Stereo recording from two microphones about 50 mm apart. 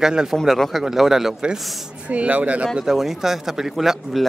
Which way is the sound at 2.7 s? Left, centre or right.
Centre.